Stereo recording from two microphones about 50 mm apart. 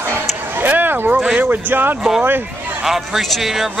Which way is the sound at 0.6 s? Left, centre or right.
Right.